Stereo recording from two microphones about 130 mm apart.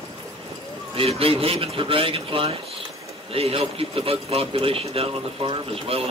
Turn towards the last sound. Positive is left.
turn(degrees=-45)  # may be behind; listen again after turning